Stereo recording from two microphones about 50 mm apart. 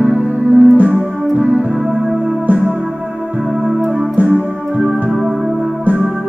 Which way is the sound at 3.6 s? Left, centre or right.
Right.